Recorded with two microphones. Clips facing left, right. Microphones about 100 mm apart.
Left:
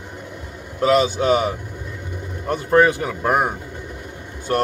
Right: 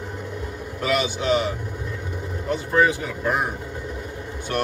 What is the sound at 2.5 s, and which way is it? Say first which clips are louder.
Speech: left 4 dB; 55° left (ahead or behind).